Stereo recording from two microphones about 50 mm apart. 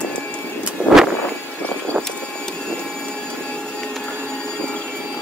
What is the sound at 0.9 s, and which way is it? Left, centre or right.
Vehicle, left.